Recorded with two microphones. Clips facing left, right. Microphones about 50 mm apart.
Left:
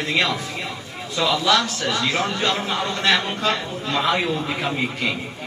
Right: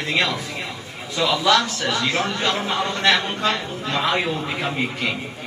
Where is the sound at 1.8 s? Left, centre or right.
Right.